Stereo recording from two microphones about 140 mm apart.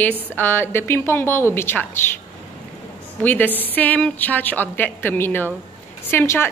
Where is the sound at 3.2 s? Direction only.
15° left (ahead or behind).